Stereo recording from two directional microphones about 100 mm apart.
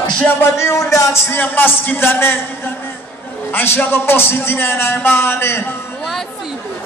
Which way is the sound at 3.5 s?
20° left (ahead or behind).